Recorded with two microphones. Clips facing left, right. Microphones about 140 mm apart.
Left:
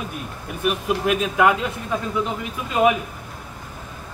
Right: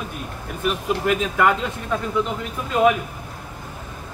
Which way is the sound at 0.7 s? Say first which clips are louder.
Even; 10° left (ahead or behind).